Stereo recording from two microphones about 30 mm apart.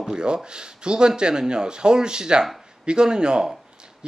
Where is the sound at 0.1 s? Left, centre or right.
Right.